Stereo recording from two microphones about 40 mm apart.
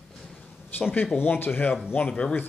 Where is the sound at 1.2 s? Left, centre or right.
Left.